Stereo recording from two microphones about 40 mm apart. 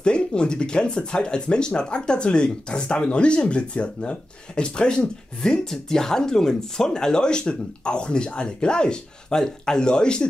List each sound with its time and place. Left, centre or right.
0.0 s speech: left